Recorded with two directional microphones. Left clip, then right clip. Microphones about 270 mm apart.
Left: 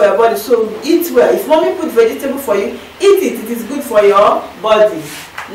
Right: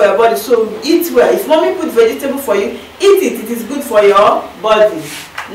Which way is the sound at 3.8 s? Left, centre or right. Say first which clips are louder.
Right 1 dB; centre.